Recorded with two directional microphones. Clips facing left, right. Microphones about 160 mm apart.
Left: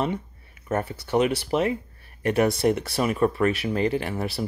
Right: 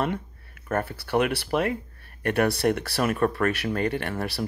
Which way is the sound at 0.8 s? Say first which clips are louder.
Left 3 dB; 65° right (ahead or behind).